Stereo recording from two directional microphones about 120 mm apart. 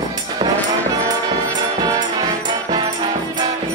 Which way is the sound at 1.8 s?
35° right (ahead or behind).